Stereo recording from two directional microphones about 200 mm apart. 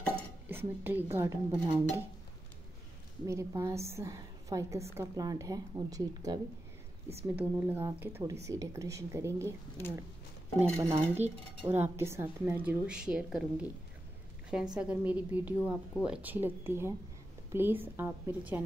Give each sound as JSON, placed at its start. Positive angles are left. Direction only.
{"t": 0.5, "sound": "speech", "side_deg": -10}
{"t": 3.3, "sound": "speech", "side_deg": -15}
{"t": 10.6, "sound": "a woman's voice", "side_deg": -15}